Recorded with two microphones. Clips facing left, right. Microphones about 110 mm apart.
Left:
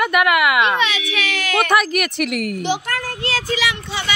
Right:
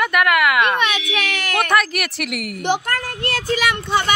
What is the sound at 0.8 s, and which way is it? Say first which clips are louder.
Female singing: right 1 dB; 55° right (ahead or behind).